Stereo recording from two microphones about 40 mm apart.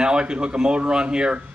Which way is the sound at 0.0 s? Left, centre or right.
Right.